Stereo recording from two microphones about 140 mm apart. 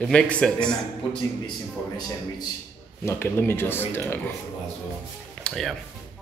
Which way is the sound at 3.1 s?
15° left (ahead or behind).